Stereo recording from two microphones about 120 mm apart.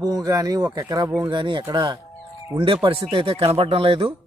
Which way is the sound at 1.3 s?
40° right (ahead or behind).